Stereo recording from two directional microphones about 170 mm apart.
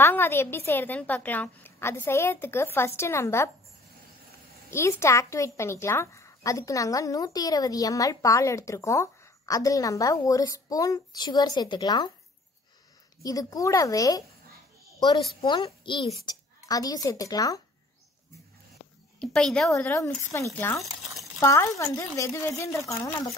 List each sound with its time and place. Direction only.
0.0 s a woman's voice: 15° left (ahead or behind)
4.6 s a child's voice: 15° left (ahead or behind)
13.2 s a child's voice: 20° left (ahead or behind)
15.4 s a child's voice: 25° left (ahead or behind)
19.1 s speech: 5° left (ahead or behind)
19.7 s a woman's voice: 15° left (ahead or behind)